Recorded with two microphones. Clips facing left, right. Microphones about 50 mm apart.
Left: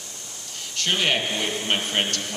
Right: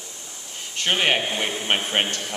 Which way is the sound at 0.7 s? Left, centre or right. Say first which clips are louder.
Right 2 dB; right.